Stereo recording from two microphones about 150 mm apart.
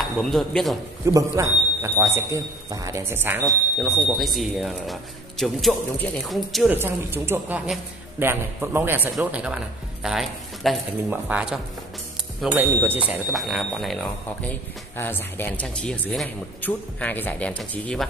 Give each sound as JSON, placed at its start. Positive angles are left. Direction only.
{"t": 0.2, "sound": "speech", "side_deg": 5}
{"t": 1.0, "sound": "a man's voice", "side_deg": -20}
{"t": 3.4, "sound": "speech", "side_deg": 0}
{"t": 6.7, "sound": "a man's voice", "side_deg": -15}
{"t": 13.3, "sound": "speech", "side_deg": 0}
{"t": 15.0, "sound": "speech", "side_deg": 15}